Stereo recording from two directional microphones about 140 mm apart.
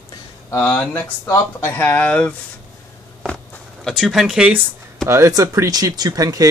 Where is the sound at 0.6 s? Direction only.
15° left (ahead or behind).